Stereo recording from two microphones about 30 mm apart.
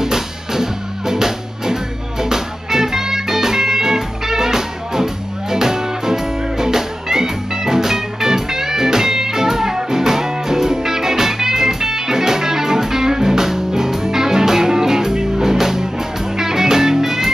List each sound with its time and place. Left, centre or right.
0.0 s music: centre